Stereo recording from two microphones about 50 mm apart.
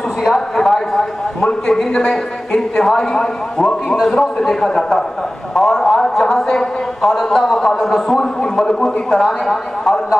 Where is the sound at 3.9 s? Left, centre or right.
Centre.